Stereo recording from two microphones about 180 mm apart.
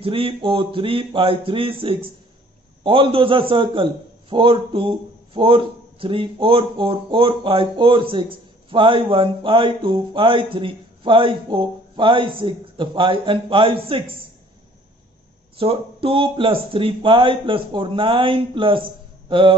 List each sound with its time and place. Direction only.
0.0 s a man's voice: 30° right (ahead or behind)
15.5 s a man's voice: 30° right (ahead or behind)